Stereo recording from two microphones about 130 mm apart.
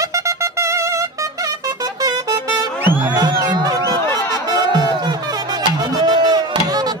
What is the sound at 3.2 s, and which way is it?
Music, 30° right (ahead or behind).